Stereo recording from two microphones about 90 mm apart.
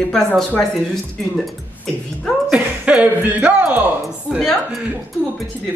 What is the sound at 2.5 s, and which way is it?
Speech, 15° right (ahead or behind).